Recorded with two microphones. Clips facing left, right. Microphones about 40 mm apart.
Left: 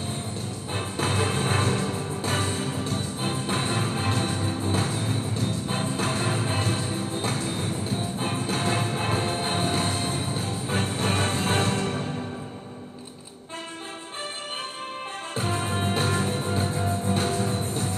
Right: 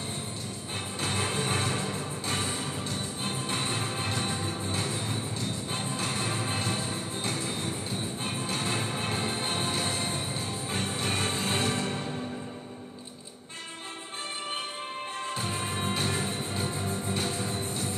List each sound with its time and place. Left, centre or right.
0.9 s music: left
3.2 s music: left
3.5 s music: left
7.9 s music: left
10.1 s music: left
15.3 s music: left